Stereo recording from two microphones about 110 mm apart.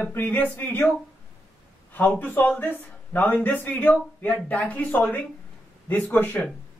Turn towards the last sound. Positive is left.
turn(degrees=15)  # may be behind; listen again after turning